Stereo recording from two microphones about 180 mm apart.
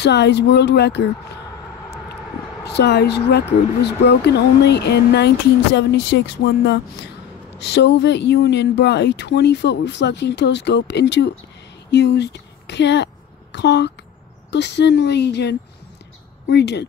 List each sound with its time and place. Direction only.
0.0 s a woman's voice: 70° left (ahead or behind)
2.6 s a woman's voice: 70° left (ahead or behind)